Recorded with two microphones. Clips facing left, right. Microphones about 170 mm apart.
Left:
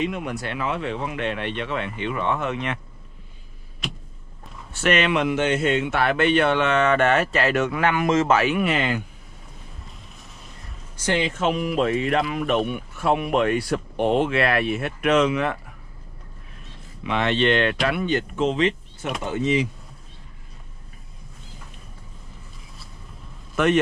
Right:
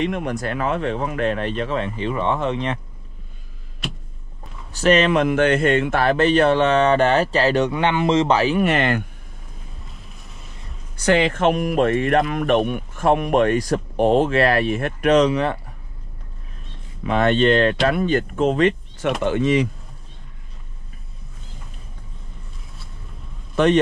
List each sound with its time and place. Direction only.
0.0 s speech: 50° right (ahead or behind); by 2.8 s 30° right (ahead or behind)
4.7 s speech: 35° right (ahead or behind); by 5.9 s 55° right (ahead or behind)
5.9 s speech: 35° right (ahead or behind)
8.6 s speech: 55° right (ahead or behind)
11.0 s speech: 90° right
11.3 s speech: 55° right (ahead or behind); by 15.6 s 35° right (ahead or behind)
16.6 s speech: 40° right (ahead or behind)
19.2 s speech: 80° right
23.5 s speech: 30° right (ahead or behind)